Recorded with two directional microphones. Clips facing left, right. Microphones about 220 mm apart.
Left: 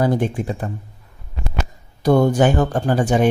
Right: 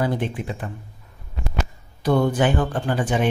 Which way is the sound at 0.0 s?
45° left (ahead or behind).